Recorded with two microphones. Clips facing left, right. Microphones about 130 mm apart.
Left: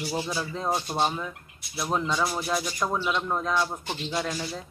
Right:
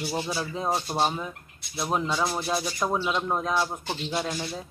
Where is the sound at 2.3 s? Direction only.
25° right (ahead or behind).